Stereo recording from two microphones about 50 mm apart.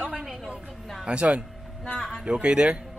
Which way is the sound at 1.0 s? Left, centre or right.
Right.